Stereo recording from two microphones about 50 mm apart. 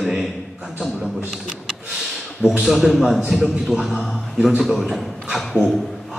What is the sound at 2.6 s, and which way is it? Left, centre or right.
A man's voice, centre.